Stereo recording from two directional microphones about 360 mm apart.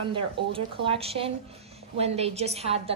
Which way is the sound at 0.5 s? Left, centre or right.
Centre.